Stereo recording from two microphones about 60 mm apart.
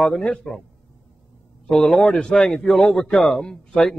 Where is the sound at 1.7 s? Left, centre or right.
Centre.